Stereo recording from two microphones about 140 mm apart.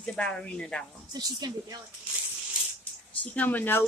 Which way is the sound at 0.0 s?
5° left (ahead or behind).